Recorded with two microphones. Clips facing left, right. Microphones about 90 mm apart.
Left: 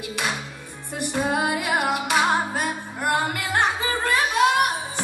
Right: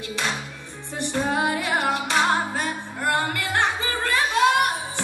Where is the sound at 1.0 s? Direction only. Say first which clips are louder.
Even; 10° left (ahead or behind).